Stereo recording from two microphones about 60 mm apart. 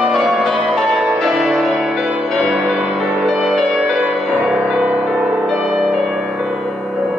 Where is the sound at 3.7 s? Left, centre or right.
Centre.